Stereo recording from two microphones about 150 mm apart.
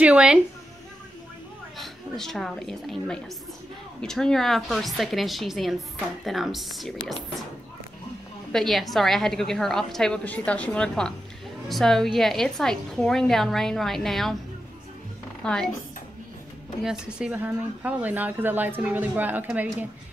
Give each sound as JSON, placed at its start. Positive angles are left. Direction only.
{"t": 0.0, "sound": "speech", "side_deg": -5}
{"t": 1.8, "sound": "a woman's voice", "side_deg": 0}
{"t": 8.5, "sound": "a woman's voice", "side_deg": 0}
{"t": 15.4, "sound": "a woman's voice", "side_deg": 5}
{"t": 16.8, "sound": "speech", "side_deg": -5}